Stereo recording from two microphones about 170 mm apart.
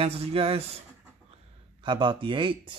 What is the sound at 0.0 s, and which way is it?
Speech, 35° right (ahead or behind).